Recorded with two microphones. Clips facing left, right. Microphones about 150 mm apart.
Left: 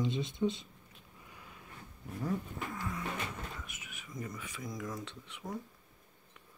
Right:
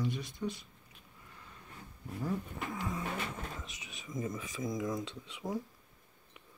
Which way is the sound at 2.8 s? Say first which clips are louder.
Right 3 dB; 20° right (ahead or behind).